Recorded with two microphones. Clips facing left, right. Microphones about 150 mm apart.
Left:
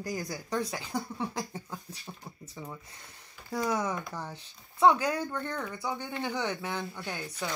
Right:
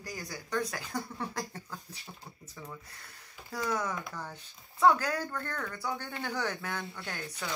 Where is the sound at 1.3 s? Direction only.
15° left (ahead or behind).